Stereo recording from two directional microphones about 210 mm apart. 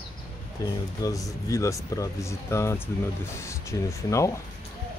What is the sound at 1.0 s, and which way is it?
Speech, 15° left (ahead or behind).